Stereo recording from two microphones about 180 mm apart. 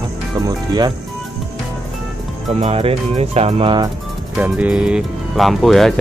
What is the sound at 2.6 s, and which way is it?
Speech, 35° right (ahead or behind).